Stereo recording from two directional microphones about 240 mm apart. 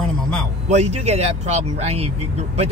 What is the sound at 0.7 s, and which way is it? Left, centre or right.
Speech, right.